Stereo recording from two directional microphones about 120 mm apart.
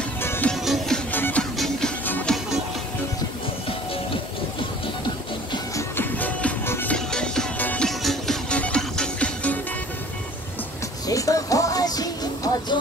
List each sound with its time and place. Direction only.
0.2 s music: 20° left (ahead or behind)
0.5 s music: 5° left (ahead or behind)
1.1 s music: 15° left (ahead or behind)
5.8 s music: 15° left (ahead or behind)
7.1 s music: 5° left (ahead or behind)
8.0 s music: centre (ahead or behind)
11.1 s music: 30° left (ahead or behind)